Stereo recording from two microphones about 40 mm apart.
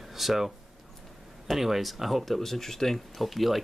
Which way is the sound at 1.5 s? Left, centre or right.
Centre.